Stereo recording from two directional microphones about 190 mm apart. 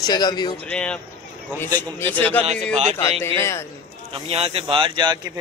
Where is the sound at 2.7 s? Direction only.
35° right (ahead or behind).